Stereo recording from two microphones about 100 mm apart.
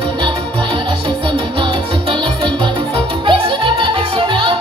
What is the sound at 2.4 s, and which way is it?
Music, 55° right (ahead or behind).